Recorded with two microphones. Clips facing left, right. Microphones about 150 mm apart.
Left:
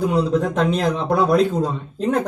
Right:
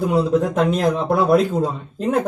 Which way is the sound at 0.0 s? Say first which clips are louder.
Right 1 dB; 5° right (ahead or behind).